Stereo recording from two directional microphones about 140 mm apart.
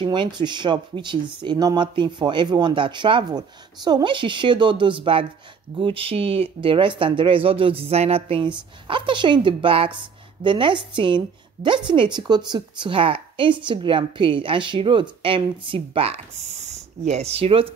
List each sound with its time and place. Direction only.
0.0 s a woman's voice: 35° right (ahead or behind)
16.6 s speech: 55° right (ahead or behind)